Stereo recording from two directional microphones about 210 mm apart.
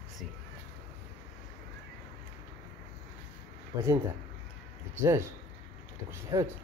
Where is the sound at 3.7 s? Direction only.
15° right (ahead or behind).